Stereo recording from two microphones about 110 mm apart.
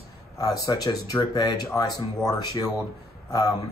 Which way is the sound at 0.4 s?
35° left (ahead or behind).